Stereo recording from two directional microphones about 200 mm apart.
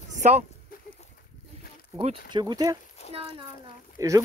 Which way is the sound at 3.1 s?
30° right (ahead or behind).